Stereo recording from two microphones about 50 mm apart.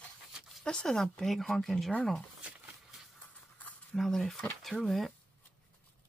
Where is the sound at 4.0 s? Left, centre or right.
Centre.